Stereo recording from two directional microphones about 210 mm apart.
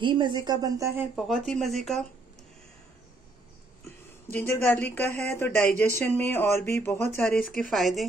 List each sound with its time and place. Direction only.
0.0 s speech: 20° right (ahead or behind)
1.1 s speech: centre (ahead or behind)
3.8 s speech: 10° left (ahead or behind)